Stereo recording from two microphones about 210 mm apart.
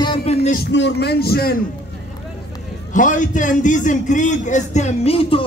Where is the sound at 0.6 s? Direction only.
55° left (ahead or behind).